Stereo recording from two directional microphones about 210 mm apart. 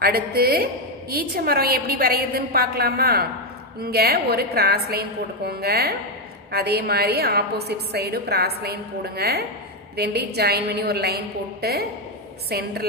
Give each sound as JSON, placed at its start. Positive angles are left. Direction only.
{"t": 0.0, "sound": "a woman's voice", "side_deg": -45}